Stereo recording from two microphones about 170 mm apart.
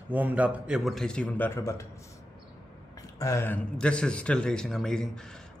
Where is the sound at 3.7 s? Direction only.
5° left (ahead or behind).